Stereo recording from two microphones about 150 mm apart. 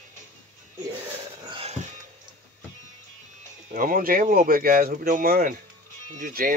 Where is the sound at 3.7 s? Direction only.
70° right (ahead or behind).